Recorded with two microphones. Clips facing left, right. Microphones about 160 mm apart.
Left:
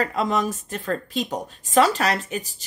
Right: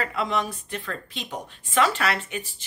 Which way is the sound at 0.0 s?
40° left (ahead or behind).